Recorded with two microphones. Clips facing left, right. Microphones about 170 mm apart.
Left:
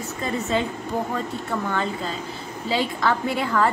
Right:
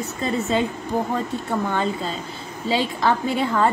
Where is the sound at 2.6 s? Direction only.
25° right (ahead or behind).